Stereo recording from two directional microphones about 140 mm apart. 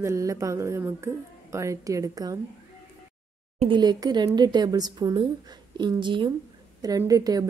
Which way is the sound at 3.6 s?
35° right (ahead or behind).